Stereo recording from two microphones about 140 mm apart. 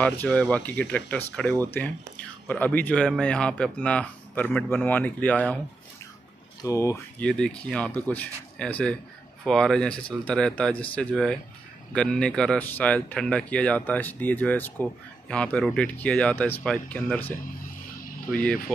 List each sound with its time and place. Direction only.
0.0 s speech: 10° left (ahead or behind)
6.6 s speech: 20° left (ahead or behind)
7.2 s speech: 5° left (ahead or behind)